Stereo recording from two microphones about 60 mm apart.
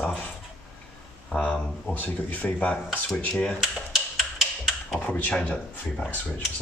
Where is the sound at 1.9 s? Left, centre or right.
Left.